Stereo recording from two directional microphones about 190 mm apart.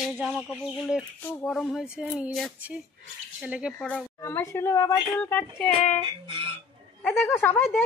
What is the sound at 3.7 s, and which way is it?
Speech, 5° left (ahead or behind).